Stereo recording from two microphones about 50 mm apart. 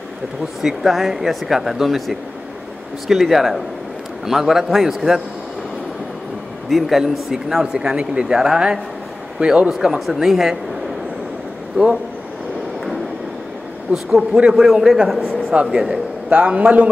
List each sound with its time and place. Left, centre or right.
0.6 s speech: centre
6.7 s speech: centre
7.6 s a man's voice: centre
9.7 s speech: centre
11.7 s a man's voice: right
13.9 s speech: right
14.5 s speech: centre
15.6 s a man's voice: centre